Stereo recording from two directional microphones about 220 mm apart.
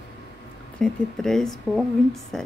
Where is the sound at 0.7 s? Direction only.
Centre (ahead or behind).